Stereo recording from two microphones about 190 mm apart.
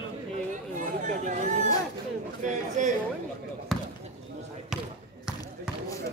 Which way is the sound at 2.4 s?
40° right (ahead or behind).